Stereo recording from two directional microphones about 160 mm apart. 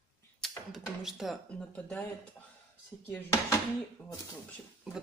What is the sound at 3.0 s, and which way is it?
Speech, 15° left (ahead or behind).